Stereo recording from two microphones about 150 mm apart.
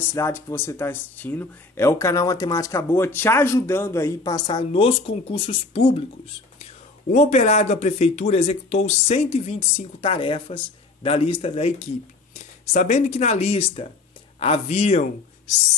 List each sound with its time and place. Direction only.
0.1 s speech: 15° left (ahead or behind); by 15.0 s 45° left (ahead or behind)